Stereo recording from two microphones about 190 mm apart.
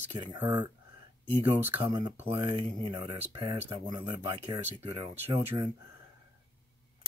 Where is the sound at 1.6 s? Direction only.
10° right (ahead or behind).